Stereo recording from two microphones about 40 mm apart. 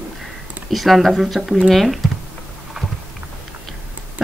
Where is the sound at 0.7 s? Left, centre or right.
Centre.